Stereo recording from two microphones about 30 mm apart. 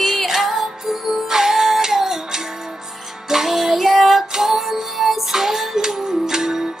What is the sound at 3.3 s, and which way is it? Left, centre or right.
Child singing, centre.